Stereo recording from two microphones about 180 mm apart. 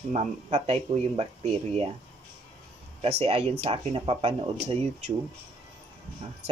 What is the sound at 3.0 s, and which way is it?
Speech, 35° right (ahead or behind).